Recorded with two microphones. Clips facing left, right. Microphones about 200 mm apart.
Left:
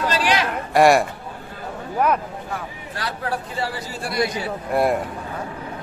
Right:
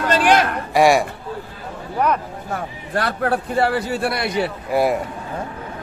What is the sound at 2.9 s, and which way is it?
A man's voice, 55° right (ahead or behind).